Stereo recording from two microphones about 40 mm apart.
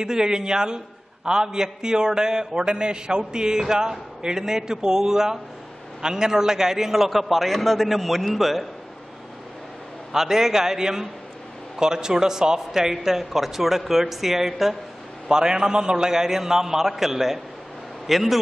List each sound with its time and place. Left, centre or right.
0.0 s a man's voice: centre
10.1 s a man's voice: centre
15.2 s a man's voice: centre